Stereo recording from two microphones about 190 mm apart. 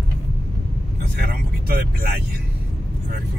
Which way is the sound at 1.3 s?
55° right (ahead or behind).